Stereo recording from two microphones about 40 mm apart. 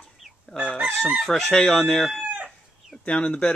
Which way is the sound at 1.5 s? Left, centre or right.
Centre.